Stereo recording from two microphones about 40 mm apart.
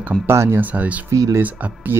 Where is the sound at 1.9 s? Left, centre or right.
Right.